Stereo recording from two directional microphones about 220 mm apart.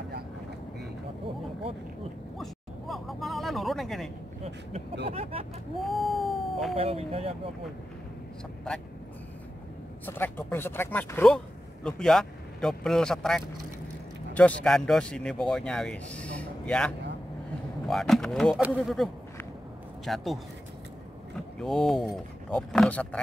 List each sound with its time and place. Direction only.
2.3 s a sound: centre (ahead or behind)
5.1 s speech: 25° right (ahead or behind)
5.9 s cat: centre (ahead or behind)
6.7 s speech: 25° right (ahead or behind)
10.0 s speech: 10° left (ahead or behind)
21.5 s speech: centre (ahead or behind)